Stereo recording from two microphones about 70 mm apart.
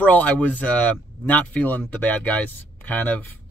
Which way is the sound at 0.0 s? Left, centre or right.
Left.